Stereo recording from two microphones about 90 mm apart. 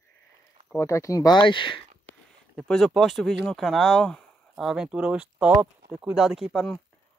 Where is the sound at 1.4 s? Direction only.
70° left (ahead or behind).